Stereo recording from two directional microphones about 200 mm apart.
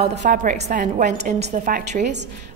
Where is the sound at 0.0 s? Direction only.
35° right (ahead or behind).